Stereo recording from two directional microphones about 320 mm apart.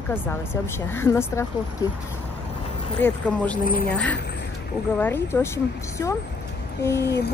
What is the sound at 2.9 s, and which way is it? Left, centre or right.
Speech, centre.